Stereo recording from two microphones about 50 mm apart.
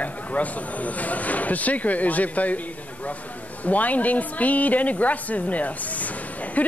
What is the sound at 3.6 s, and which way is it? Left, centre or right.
A woman's voice, left.